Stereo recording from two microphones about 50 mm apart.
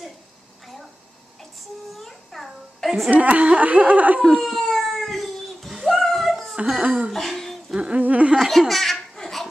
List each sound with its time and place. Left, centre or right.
2.0 s a sound: centre
3.1 s speech: right
4.4 s a sound: centre
6.5 s a sound: centre
6.8 s speech: right
7.1 s speech: centre
7.7 s humming: right
8.0 s speech: right
8.4 s belly laugh: centre